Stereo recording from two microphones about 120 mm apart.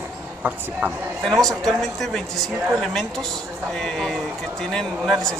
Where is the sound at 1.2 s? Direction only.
Centre (ahead or behind).